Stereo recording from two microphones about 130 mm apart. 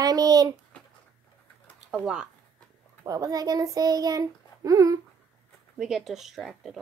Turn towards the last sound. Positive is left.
turn(degrees=0)  # may be behind; listen again after turning